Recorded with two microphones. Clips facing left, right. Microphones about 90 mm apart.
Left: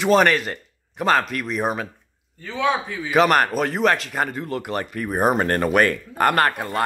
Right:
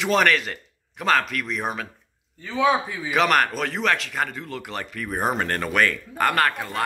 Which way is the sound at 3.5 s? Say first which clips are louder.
Left 4 dB; 45° left (ahead or behind).